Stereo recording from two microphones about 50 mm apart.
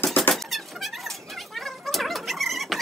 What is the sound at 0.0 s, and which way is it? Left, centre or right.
Squeak, left.